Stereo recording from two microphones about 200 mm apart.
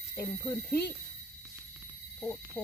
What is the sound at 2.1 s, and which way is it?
Speech, 10° left (ahead or behind).